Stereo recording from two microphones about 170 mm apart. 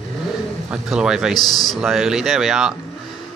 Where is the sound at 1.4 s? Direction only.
25° left (ahead or behind).